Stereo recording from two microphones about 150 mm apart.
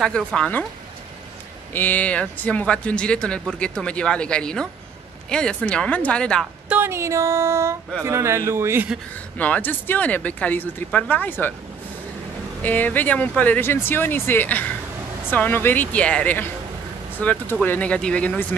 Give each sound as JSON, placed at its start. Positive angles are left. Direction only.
{"t": 0.3, "sound": "speech", "side_deg": 10}
{"t": 1.7, "sound": "speech", "side_deg": 10}
{"t": 6.7, "sound": "music", "side_deg": -15}
{"t": 9.4, "sound": "speech", "side_deg": 10}
{"t": 12.6, "sound": "speech", "side_deg": 10}